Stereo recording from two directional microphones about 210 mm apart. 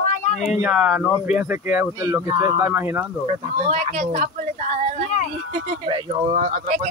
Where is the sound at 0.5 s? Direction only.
5° right (ahead or behind).